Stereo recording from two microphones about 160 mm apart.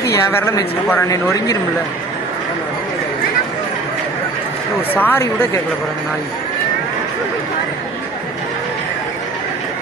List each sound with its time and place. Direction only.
0.0 s speech: 15° left (ahead or behind)
4.9 s speech: 10° left (ahead or behind)